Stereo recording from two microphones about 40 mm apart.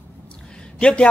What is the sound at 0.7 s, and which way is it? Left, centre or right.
Speech, left.